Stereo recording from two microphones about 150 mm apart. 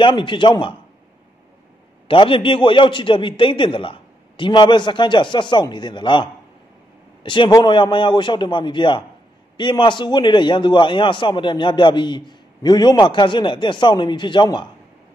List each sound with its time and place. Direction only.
0.0 s a man's voice: 35° left (ahead or behind)
2.0 s a man's voice: 35° left (ahead or behind)
7.2 s a man's voice: 30° left (ahead or behind)